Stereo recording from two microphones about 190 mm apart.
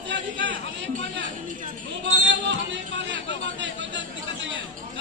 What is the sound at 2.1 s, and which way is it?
Chatter, 75° right (ahead or behind).